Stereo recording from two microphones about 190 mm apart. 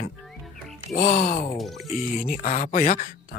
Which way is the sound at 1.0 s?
40° left (ahead or behind).